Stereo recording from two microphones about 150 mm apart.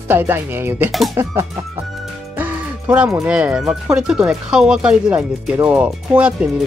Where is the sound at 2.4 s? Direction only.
10° right (ahead or behind).